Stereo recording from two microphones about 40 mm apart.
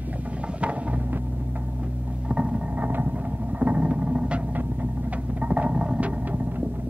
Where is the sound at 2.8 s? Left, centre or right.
Right.